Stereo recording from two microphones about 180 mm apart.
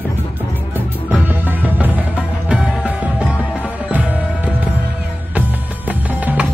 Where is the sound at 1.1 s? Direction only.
10° right (ahead or behind).